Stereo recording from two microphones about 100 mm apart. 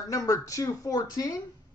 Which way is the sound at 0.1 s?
35° left (ahead or behind).